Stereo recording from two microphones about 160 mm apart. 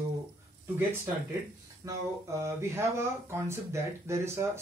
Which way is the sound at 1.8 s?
20° right (ahead or behind).